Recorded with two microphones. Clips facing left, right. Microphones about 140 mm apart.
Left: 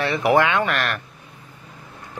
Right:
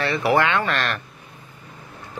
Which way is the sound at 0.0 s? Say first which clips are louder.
Left 2 dB; 20° left (ahead or behind).